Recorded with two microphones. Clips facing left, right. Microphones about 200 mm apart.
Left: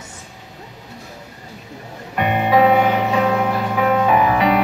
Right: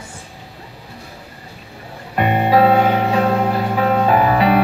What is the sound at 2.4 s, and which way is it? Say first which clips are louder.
Music: right 1 dB; 35° right (ahead or behind).